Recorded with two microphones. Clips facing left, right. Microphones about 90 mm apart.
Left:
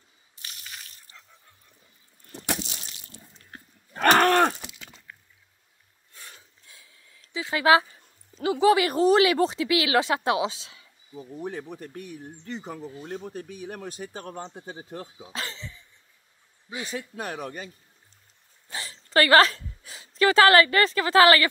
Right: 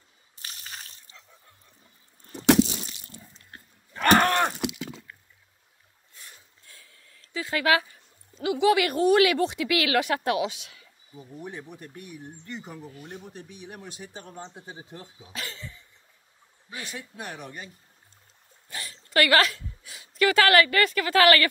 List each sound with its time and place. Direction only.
0.4 s water: 35° right (ahead or behind)
2.3 s a sound: 30° right (ahead or behind)
4.2 s cattle: 55° left (ahead or behind)
6.1 s a sound: 90° left
6.7 s a sound: 15° left (ahead or behind)
8.4 s speech: 35° left (ahead or behind)
11.4 s speech: 40° left (ahead or behind); by 14.5 s 55° left (ahead or behind)
14.7 s speech: 45° left (ahead or behind)
15.1 s speech: 25° left (ahead or behind)
16.8 s speech: 40° left (ahead or behind)
18.7 s a woman's voice: 25° left (ahead or behind)